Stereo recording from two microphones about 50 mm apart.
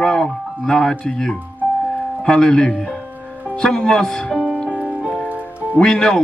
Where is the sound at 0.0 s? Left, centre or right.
Centre.